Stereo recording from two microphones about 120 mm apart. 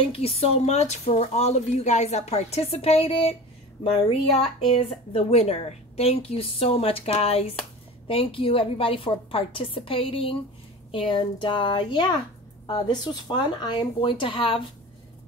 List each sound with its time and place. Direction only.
0.1 s a woman's voice: 55° left (ahead or behind)